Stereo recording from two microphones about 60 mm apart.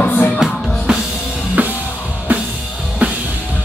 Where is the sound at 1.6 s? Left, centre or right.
Right.